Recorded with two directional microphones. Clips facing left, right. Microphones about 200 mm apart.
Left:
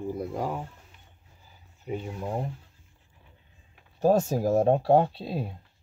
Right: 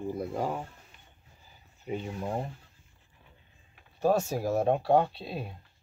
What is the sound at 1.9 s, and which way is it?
Speech, 5° left (ahead or behind).